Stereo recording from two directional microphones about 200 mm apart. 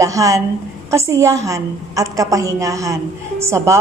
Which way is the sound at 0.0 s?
15° right (ahead or behind).